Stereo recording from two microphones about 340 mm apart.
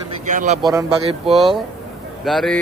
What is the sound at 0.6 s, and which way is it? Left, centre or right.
A man's voice, centre.